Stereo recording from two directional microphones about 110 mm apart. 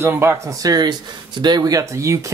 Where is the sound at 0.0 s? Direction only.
20° right (ahead or behind).